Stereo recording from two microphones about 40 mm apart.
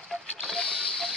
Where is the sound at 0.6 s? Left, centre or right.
Left.